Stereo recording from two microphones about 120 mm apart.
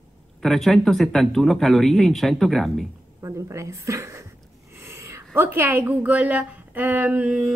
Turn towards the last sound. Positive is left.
turn(degrees=-10)  # may be behind; listen again after turning